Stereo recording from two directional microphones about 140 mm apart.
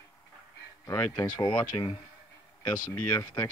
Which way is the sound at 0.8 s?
20° left (ahead or behind).